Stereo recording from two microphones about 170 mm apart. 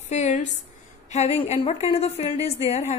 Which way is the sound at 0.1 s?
45° left (ahead or behind).